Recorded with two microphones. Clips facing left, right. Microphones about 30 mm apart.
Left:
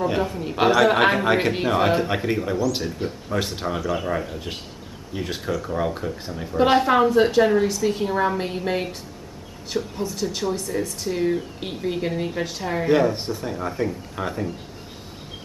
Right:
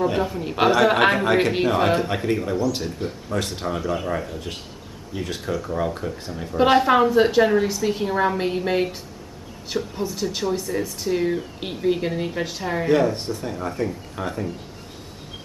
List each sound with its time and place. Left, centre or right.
0.0 s speech: centre
12.8 s speech: centre